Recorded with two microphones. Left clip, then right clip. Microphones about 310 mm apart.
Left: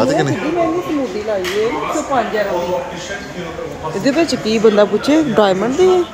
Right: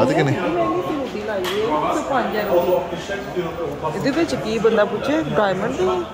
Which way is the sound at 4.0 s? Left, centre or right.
Left.